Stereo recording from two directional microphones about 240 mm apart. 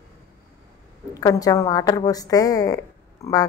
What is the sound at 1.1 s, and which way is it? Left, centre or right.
A woman's voice, centre.